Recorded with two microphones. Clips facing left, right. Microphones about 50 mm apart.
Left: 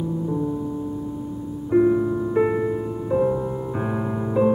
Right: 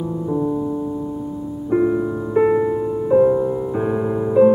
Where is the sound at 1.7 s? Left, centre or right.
Centre.